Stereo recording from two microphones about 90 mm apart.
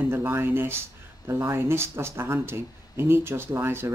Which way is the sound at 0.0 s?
25° right (ahead or behind).